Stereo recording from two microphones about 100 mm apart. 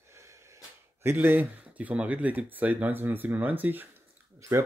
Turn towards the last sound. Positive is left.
turn(degrees=-30)  # may be behind; listen again after turning